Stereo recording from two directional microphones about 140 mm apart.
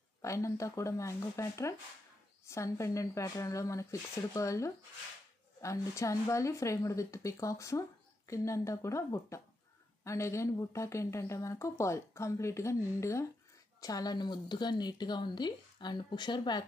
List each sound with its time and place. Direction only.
0.2 s speech: 20° left (ahead or behind)